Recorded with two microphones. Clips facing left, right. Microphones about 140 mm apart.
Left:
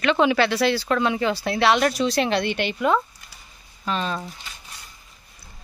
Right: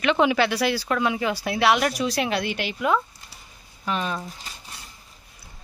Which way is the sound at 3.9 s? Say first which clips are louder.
Left 1 dB; 15° right (ahead or behind).